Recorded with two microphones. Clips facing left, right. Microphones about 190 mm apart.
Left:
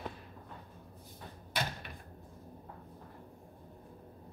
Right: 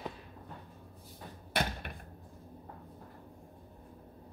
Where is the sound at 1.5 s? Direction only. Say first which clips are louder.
Right 4 dB; 60° right (ahead or behind).